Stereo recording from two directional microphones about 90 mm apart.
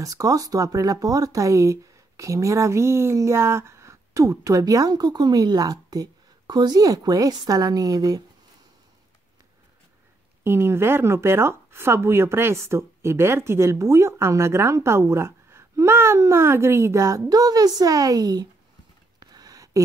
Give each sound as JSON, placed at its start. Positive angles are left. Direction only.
{"t": 0.0, "sound": "speech", "side_deg": -40}
{"t": 10.4, "sound": "speech", "side_deg": -25}
{"t": 19.1, "sound": "a sound", "side_deg": -45}